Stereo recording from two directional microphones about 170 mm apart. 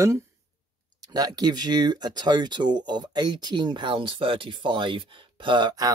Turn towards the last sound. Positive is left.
turn(degrees=-25)  # may be behind; listen again after turning